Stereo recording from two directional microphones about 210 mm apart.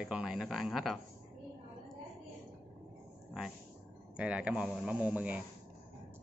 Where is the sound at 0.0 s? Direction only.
5° right (ahead or behind).